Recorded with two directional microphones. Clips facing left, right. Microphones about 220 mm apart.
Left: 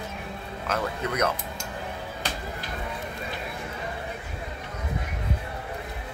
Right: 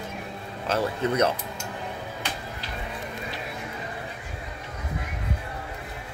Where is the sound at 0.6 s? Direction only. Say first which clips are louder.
Right 4 dB; 30° right (ahead or behind).